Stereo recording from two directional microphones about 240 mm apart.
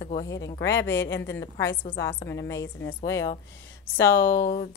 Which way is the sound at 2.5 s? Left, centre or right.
Left.